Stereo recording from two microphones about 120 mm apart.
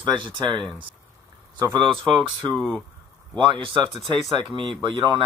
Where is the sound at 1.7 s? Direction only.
40° right (ahead or behind).